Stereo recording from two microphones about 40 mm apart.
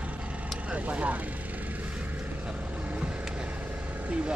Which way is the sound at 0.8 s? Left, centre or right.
Right.